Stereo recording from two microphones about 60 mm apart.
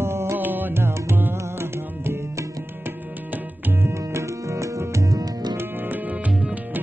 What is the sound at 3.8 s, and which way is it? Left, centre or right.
Music, right.